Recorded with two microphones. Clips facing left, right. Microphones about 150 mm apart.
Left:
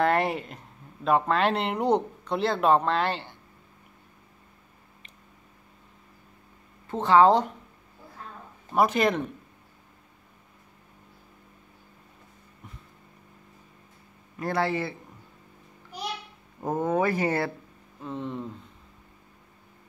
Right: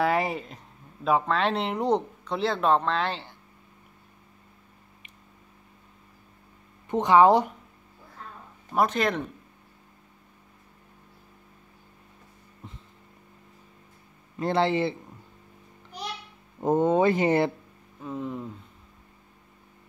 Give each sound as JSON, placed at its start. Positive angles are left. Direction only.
{"t": 0.0, "sound": "speech", "side_deg": 0}
{"t": 6.9, "sound": "speech", "side_deg": -15}
{"t": 8.7, "sound": "speech", "side_deg": 5}
{"t": 14.4, "sound": "speech", "side_deg": -25}
{"t": 16.6, "sound": "speech", "side_deg": -25}
{"t": 18.0, "sound": "speech", "side_deg": -5}